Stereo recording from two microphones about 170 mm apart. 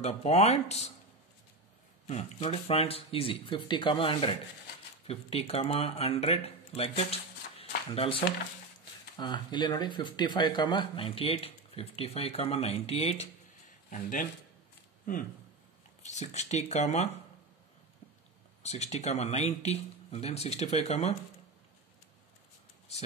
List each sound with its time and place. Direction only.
0.0 s speech: 40° left (ahead or behind)
2.0 s speech: 40° left (ahead or behind)
13.8 s speech: 50° left (ahead or behind)
16.0 s speech: 40° left (ahead or behind)
18.6 s speech: 40° left (ahead or behind)